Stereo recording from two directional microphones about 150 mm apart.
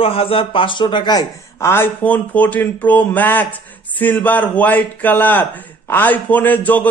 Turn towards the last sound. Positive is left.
turn(degrees=10)  # may be behind; listen again after turning